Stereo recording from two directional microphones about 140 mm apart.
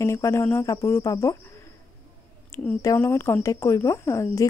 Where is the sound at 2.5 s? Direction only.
20° left (ahead or behind).